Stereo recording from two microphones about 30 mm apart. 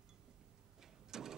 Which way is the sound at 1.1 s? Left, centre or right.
Centre.